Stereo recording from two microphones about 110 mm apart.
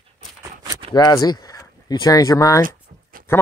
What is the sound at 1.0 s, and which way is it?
Speech, 35° left (ahead or behind).